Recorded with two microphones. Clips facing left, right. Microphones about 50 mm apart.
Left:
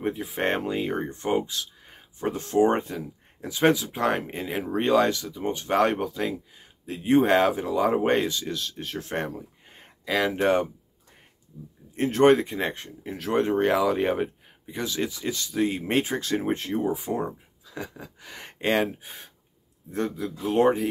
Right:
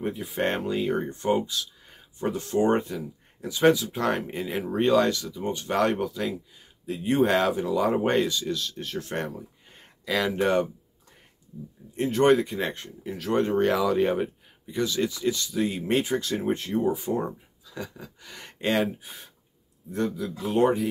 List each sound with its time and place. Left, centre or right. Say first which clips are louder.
0.0 s speech: left 1 dB; left
11.9 s speech: left 2 dB; left
17.0 s speech: right 1 dB; centre
17.7 s speech: left 1 dB; left